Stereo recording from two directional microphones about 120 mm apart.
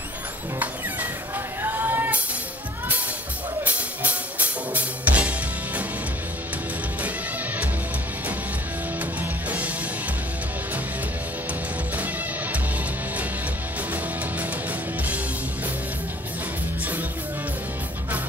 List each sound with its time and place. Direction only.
1.6 s a sound: 15° right (ahead or behind)
3.6 s music: 10° right (ahead or behind)
9.2 s music: 15° right (ahead or behind)